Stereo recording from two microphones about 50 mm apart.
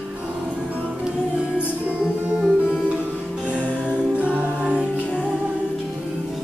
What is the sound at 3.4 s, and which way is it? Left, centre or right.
Music, right.